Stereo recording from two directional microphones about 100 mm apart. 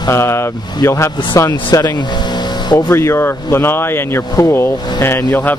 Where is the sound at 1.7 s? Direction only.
45° left (ahead or behind).